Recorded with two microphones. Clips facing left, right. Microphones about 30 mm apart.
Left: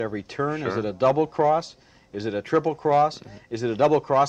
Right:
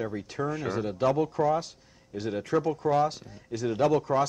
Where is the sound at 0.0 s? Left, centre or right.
Left.